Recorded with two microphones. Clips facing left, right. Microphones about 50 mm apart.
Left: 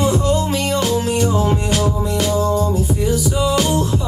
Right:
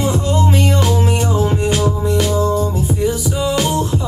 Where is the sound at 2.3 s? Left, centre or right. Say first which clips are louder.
Right 1 dB; centre.